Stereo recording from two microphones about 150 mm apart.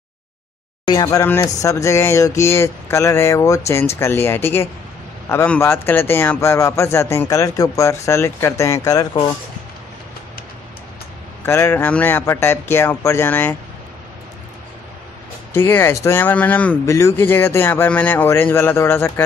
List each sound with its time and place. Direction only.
0.8 s a man's voice: 25° left (ahead or behind)
11.4 s a man's voice: 15° left (ahead or behind)
15.5 s a man's voice: 15° left (ahead or behind)